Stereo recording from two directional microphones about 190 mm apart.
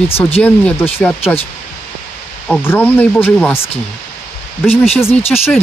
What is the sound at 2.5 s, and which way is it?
Speech, 10° left (ahead or behind).